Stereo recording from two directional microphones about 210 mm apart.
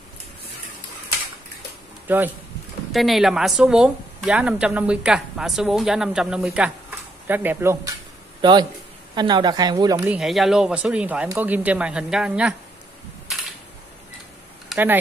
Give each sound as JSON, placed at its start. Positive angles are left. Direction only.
{"t": 2.0, "sound": "speech", "side_deg": -10}
{"t": 8.4, "sound": "a man's voice", "side_deg": -20}
{"t": 14.7, "sound": "speech", "side_deg": -10}